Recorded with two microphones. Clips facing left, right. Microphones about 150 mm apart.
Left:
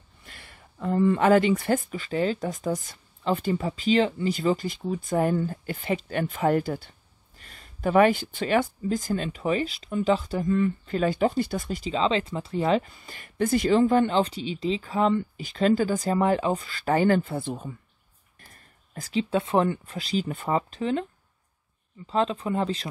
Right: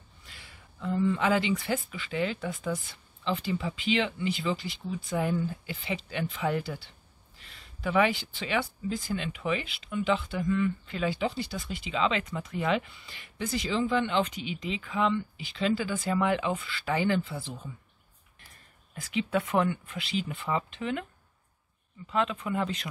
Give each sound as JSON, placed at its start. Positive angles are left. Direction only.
{"t": 0.2, "sound": "speech", "side_deg": 55}
{"t": 18.9, "sound": "speech", "side_deg": 35}